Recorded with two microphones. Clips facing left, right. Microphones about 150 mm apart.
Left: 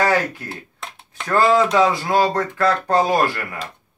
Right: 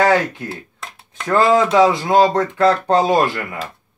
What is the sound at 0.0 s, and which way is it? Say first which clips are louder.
Speech: right 4 dB; 25° right (ahead or behind).